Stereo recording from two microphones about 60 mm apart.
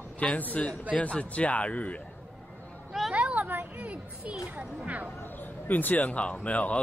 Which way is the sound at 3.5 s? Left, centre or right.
Right.